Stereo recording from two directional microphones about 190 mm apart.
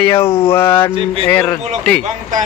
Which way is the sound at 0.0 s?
10° left (ahead or behind).